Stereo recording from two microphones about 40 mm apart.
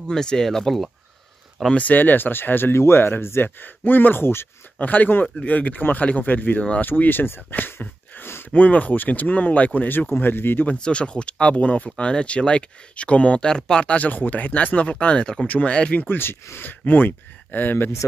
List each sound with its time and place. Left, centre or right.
0.1 s speech: centre
1.8 s speech: left
3.4 s speech: left
4.2 s speech: left
4.7 s speech: left
8.5 s speech: left
9.8 s speech: left
10.8 s speech: left
13.8 s speech: left
16.1 s speech: left
16.8 s speech: left